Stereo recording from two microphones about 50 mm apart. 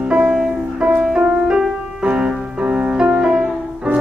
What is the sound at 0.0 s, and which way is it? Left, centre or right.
Music, centre.